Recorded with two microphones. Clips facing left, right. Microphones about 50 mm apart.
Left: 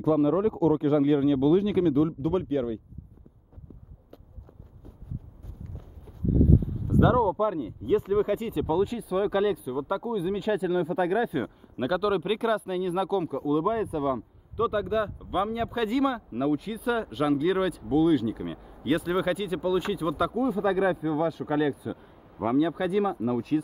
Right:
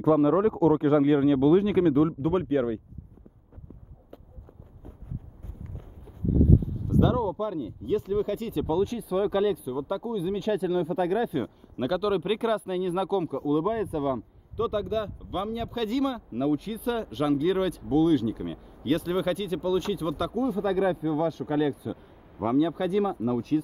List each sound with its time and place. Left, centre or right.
0.0 s speech: right
6.0 s a sound: centre
7.0 s speech: centre